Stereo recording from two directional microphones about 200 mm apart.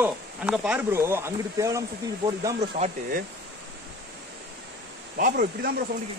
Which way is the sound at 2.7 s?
40° right (ahead or behind).